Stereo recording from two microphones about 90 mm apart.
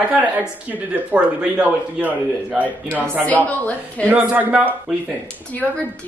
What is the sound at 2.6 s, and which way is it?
Speech, 15° left (ahead or behind).